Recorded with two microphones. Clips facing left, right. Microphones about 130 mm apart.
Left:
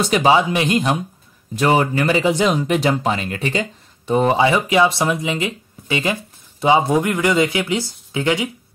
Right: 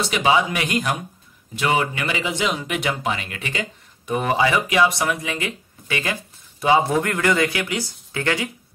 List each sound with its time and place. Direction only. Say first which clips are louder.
0.0 s speech: left 4 dB; 40° left (ahead or behind)
1.5 s speech: left 5 dB; 40° left (ahead or behind); by 8.5 s 15° left (ahead or behind)